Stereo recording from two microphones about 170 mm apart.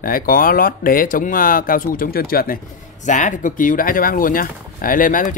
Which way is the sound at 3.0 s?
50° left (ahead or behind).